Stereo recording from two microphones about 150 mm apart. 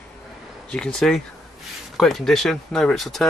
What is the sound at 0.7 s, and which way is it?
Speech, 5° left (ahead or behind).